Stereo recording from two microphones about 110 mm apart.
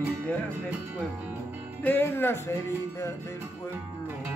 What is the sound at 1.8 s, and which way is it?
Speech, 20° left (ahead or behind).